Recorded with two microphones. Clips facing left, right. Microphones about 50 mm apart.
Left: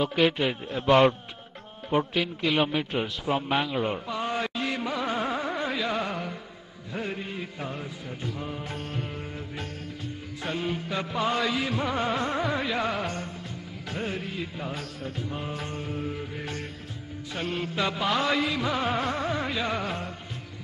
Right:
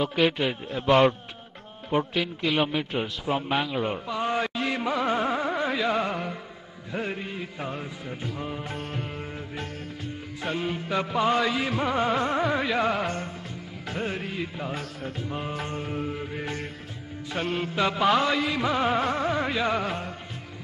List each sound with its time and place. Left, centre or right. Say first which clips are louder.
0.0 s a man's voice: even; centre
4.1 s music: right 2 dB; centre
5.1 s carnatic music: right 3 dB; centre
5.9 s music: right 3 dB; centre
11.3 s a man's voice: right 2 dB; centre
11.6 s music: right 2 dB; centre
14.8 s music: right 1 dB; centre
17.9 s music: right 7 dB; right
18.2 s a man's voice: right 1 dB; centre
18.5 s music: right 3 dB; centre